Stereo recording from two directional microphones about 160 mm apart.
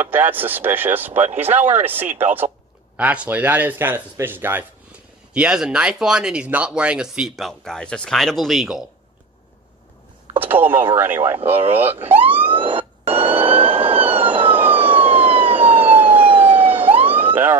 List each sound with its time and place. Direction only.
0.0 s speech: 10° right (ahead or behind)
1.1 s speech: 45° right (ahead or behind)
1.4 s speech: 10° right (ahead or behind)
10.4 s speech: 10° right (ahead or behind)
12.4 s a sound: 35° right (ahead or behind)
13.7 s vehicle: 35° right (ahead or behind)
14.2 s emergency vehicle: 10° right (ahead or behind)
15.2 s police car: 35° right (ahead or behind)
16.3 s emergency vehicle: 35° right (ahead or behind)
16.5 s emergency vehicle: 10° right (ahead or behind)
17.0 s police car: 10° right (ahead or behind)